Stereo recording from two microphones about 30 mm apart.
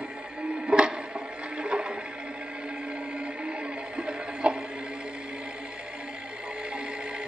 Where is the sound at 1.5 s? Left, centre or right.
Right.